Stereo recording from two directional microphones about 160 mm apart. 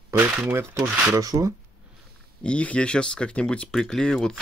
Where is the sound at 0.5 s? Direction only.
15° right (ahead or behind).